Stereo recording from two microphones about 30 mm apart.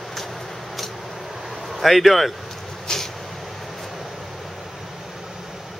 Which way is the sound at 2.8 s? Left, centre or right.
Centre.